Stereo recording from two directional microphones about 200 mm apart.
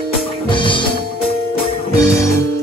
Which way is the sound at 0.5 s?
25° left (ahead or behind).